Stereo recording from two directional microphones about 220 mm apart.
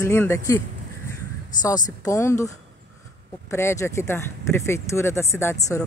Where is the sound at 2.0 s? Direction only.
10° left (ahead or behind).